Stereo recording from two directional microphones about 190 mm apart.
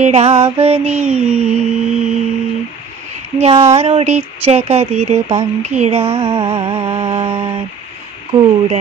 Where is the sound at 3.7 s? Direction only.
30° right (ahead or behind).